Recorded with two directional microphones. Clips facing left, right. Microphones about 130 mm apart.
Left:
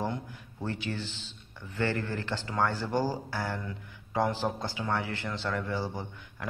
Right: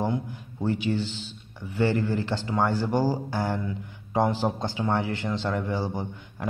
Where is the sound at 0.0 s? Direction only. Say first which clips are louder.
Right 6 dB; 15° right (ahead or behind).